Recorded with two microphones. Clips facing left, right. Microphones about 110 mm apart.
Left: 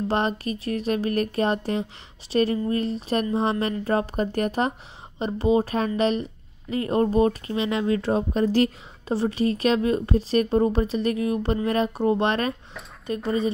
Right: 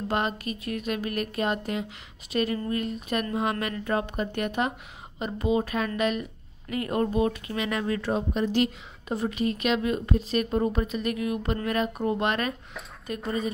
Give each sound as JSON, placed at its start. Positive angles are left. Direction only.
{"t": 0.1, "sound": "speech", "side_deg": 35}